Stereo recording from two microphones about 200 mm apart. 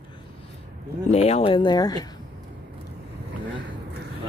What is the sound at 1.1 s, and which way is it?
Speech, 30° left (ahead or behind).